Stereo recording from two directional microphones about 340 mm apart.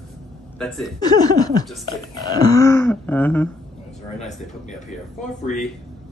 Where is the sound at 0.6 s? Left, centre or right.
Centre.